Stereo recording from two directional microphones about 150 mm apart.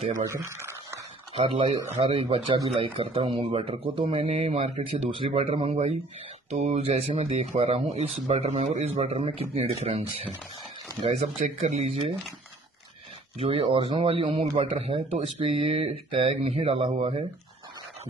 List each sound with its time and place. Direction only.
0.3 s a sound: 20° right (ahead or behind)
1.3 s speech: 35° right (ahead or behind)
1.8 s speech: 25° right (ahead or behind)
2.2 s speech: 40° right (ahead or behind)
9.0 s speech: 35° right (ahead or behind)
13.4 s speech: 40° right (ahead or behind)